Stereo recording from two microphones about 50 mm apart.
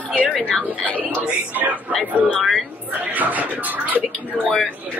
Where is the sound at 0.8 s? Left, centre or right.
Right.